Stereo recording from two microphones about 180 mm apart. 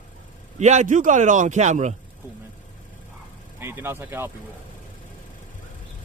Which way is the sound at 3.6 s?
10° right (ahead or behind).